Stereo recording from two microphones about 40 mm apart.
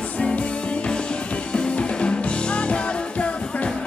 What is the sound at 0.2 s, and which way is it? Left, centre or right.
Music, left.